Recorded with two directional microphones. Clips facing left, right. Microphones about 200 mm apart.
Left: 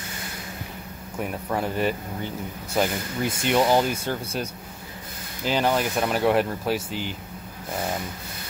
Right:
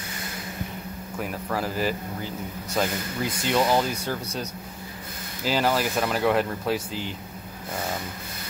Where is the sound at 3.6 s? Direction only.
25° left (ahead or behind).